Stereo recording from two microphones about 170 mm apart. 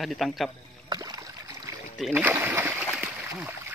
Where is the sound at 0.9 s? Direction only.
25° right (ahead or behind).